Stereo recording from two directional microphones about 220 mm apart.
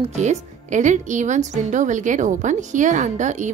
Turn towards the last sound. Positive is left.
turn(degrees=-35)  # may be behind; listen again after turning